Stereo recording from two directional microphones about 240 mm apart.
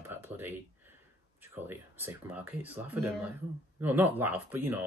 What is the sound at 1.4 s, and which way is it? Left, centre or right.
Speech, centre.